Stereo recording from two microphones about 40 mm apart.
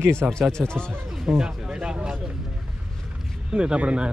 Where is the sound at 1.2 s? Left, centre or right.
Centre.